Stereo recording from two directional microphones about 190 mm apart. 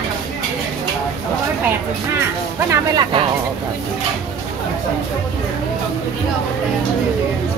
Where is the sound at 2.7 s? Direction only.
20° right (ahead or behind).